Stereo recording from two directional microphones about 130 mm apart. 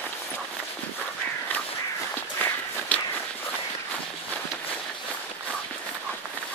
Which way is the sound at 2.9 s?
10° left (ahead or behind).